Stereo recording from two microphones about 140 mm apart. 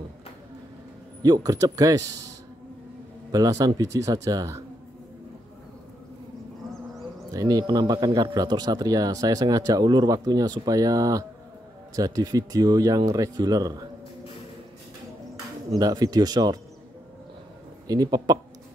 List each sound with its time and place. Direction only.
1.2 s speech: 25° right (ahead or behind)
7.2 s speech: 25° right (ahead or behind)
15.8 s speech: 25° right (ahead or behind)
17.8 s speech: 25° right (ahead or behind)